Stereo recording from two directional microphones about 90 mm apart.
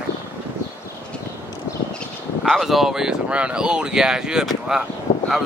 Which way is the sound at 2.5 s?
Centre (ahead or behind).